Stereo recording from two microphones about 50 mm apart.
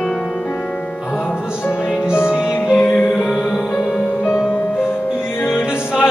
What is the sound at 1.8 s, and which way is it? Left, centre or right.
Music, centre.